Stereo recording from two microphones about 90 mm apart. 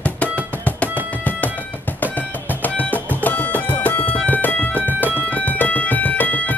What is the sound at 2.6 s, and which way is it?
Music, 20° left (ahead or behind).